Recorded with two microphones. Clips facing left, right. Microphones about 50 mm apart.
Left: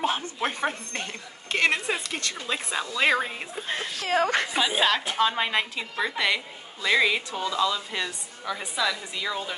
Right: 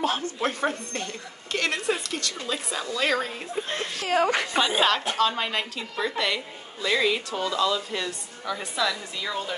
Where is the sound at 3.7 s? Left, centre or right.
Centre.